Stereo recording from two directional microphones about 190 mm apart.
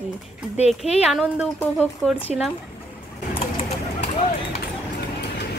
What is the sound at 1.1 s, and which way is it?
Speech, 5° right (ahead or behind).